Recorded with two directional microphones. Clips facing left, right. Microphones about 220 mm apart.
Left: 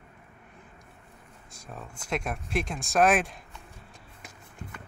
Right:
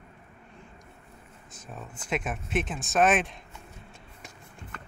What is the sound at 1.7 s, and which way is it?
Speech, 5° right (ahead or behind).